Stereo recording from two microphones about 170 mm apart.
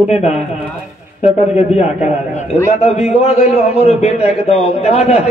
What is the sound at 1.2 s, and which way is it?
A man's voice, 40° left (ahead or behind).